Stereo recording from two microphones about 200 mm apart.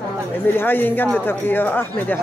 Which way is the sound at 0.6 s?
10° left (ahead or behind).